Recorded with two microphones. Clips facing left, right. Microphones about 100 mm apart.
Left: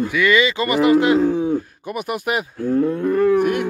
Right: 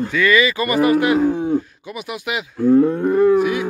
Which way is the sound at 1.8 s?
55° left (ahead or behind).